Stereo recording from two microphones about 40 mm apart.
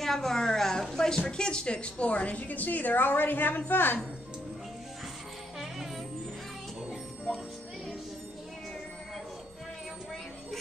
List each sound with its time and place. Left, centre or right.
0.0 s a woman's voice: centre; by 4.0 s left